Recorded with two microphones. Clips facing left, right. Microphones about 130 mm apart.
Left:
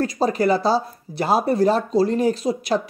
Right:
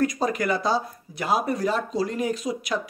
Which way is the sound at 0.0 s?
30° left (ahead or behind).